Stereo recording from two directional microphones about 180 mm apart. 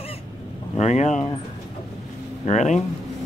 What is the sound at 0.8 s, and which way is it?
Speech, 40° left (ahead or behind).